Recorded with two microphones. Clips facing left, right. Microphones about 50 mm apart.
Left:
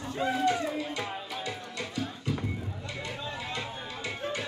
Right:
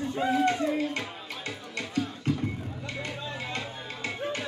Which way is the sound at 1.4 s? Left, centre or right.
Right.